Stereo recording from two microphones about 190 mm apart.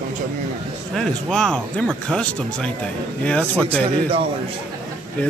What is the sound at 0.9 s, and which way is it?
A man's voice, centre (ahead or behind).